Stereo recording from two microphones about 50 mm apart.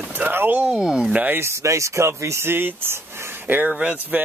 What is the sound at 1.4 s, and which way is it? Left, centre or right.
Speech, right.